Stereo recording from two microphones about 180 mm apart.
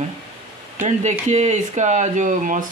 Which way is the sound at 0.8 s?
40° right (ahead or behind).